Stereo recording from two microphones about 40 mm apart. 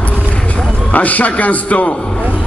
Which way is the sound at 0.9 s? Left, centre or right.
Left.